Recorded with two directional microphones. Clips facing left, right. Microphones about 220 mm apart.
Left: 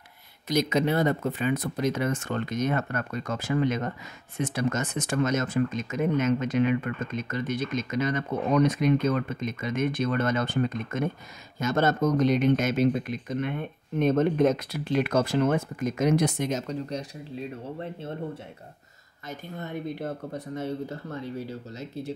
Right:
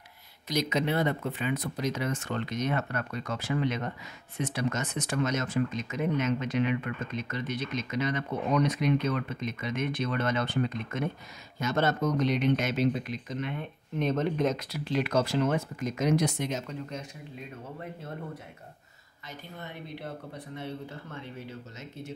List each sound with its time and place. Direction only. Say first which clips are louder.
0.5 s speech: left 4 dB; 50° left (ahead or behind)
19.2 s speech: left 6 dB; 45° left (ahead or behind)